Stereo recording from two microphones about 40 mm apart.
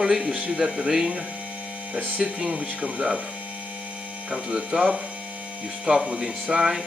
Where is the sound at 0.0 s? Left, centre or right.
Centre.